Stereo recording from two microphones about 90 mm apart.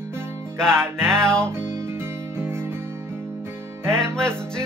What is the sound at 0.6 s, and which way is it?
Music, 5° left (ahead or behind).